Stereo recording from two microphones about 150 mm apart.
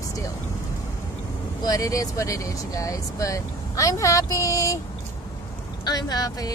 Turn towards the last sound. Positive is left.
turn(degrees=25)  # may be behind; listen again after turning